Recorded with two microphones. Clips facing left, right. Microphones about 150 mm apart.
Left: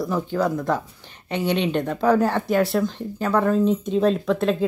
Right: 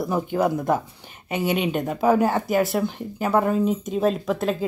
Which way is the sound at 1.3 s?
10° right (ahead or behind).